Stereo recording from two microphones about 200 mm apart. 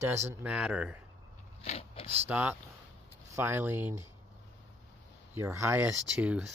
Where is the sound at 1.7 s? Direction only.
30° left (ahead or behind).